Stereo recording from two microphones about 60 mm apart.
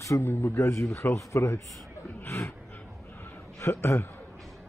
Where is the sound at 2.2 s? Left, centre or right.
Left.